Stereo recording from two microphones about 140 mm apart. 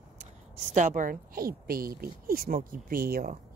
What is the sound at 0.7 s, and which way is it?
A woman's voice, 70° right (ahead or behind).